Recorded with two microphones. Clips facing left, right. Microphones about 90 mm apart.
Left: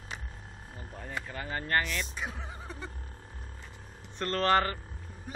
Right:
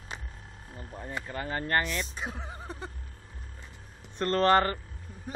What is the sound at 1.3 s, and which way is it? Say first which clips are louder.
Speech: right 2 dB; 35° right (ahead or behind).